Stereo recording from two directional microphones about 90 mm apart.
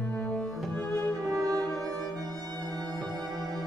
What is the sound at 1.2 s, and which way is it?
Music, 40° right (ahead or behind).